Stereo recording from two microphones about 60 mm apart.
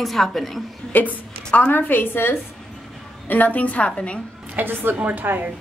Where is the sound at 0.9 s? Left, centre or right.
Left.